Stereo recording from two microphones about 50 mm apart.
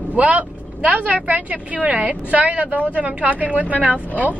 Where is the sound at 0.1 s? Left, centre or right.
Right.